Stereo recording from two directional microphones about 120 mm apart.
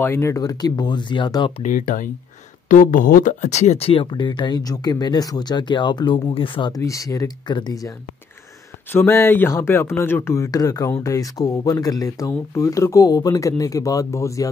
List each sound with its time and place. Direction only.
0.0 s speech: 20° left (ahead or behind); by 1.5 s 40° left (ahead or behind)
1.6 s speech: 90° left
3.3 s speech: 80° left; by 6.7 s 45° left (ahead or behind)
6.7 s speech: 30° left (ahead or behind)
8.9 s speech: 20° left (ahead or behind)